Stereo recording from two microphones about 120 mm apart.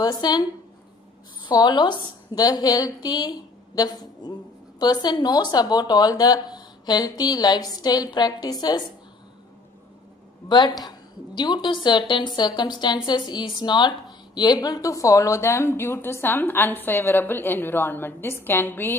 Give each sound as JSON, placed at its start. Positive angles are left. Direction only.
{"t": 0.0, "sound": "a woman's voice", "side_deg": 35}
{"t": 10.5, "sound": "a woman's voice", "side_deg": 35}